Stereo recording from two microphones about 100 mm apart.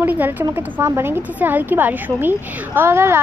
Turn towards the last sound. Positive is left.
turn(degrees=-25)  # may be behind; listen again after turning